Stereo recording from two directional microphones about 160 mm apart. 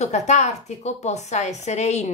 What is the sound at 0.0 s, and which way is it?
Speech, 45° left (ahead or behind).